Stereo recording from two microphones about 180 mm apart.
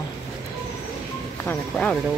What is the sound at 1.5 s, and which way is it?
Speech, 5° left (ahead or behind).